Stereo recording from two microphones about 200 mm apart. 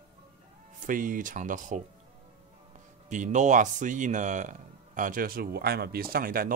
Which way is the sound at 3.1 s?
40° right (ahead or behind).